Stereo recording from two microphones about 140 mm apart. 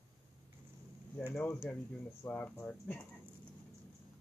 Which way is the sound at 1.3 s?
15° left (ahead or behind).